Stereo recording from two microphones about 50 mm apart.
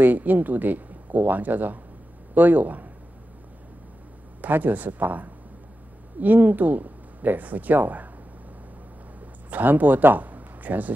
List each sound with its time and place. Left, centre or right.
0.0 s speech: right
4.4 s speech: right
9.2 s a sound: right